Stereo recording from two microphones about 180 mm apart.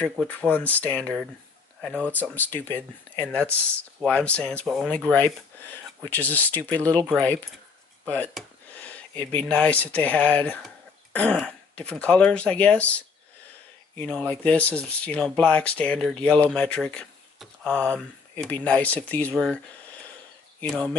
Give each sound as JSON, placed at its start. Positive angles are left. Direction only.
{"t": 0.0, "sound": "speech", "side_deg": 10}
{"t": 2.3, "sound": "speech", "side_deg": 10}
{"t": 20.6, "sound": "speech", "side_deg": 5}